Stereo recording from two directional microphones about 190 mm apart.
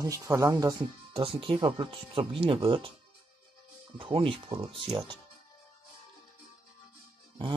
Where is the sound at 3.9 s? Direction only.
30° right (ahead or behind).